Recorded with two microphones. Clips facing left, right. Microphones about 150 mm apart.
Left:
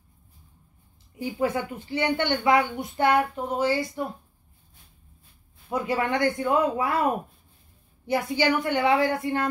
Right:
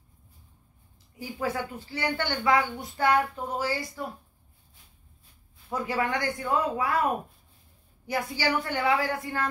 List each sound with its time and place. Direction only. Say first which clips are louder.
1.2 s a woman's voice: left 5 dB; 20° left (ahead or behind)
5.7 s a woman's voice: left 3 dB; 25° left (ahead or behind)
8.1 s a woman's voice: left 5 dB; 20° left (ahead or behind)